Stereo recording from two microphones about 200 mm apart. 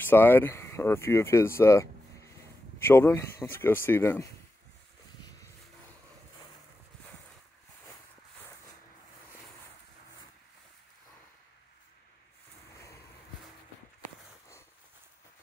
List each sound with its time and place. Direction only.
0.0 s speech: 10° left (ahead or behind)